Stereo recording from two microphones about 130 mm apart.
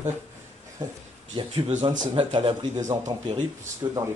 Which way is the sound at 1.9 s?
40° right (ahead or behind).